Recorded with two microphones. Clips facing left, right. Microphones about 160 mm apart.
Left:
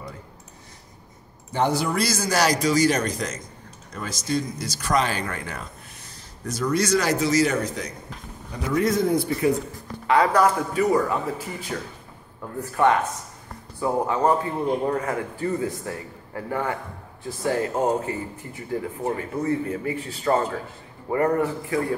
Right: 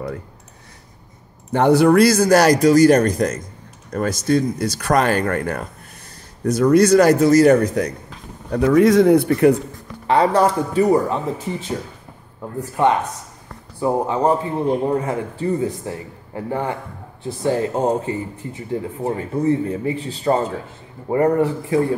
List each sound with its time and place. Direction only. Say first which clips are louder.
1.5 s a man's voice: right 10 dB; 60° right (ahead or behind)
8.5 s a man's voice: right 10 dB; 80° right
10.0 s speech: right 3 dB; 30° right (ahead or behind)